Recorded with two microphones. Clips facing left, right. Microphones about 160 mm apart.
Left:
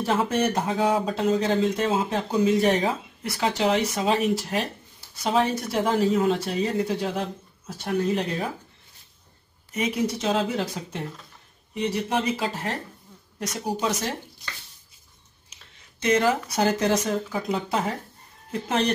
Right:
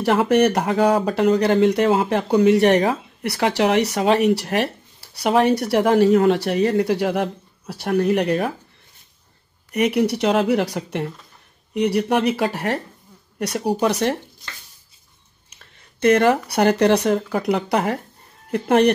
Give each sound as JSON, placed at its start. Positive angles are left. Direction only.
{"t": 0.0, "sound": "speech", "side_deg": -75}
{"t": 9.7, "sound": "speech", "side_deg": -65}
{"t": 15.5, "sound": "speech", "side_deg": -60}